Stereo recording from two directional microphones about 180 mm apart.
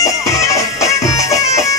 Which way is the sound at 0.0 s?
15° left (ahead or behind).